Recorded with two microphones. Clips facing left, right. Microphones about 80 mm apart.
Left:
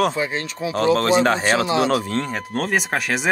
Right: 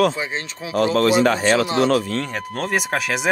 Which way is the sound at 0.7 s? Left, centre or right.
Left.